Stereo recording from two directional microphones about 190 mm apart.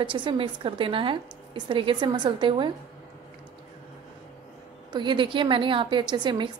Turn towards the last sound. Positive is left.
turn(degrees=-25)  # may be behind; listen again after turning